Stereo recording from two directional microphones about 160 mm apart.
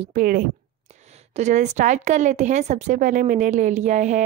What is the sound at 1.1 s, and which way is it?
A woman's voice, 45° right (ahead or behind).